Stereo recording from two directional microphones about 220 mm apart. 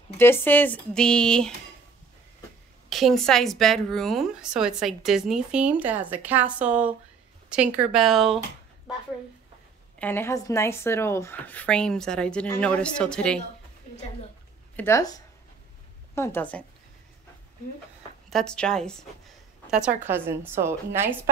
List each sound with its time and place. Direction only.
0.2 s a woman's voice: 10° left (ahead or behind)
2.9 s a woman's voice: centre (ahead or behind)
9.9 s a woman's voice: 10° left (ahead or behind)
14.8 s speech: 15° left (ahead or behind)
18.3 s a woman's voice: 5° left (ahead or behind)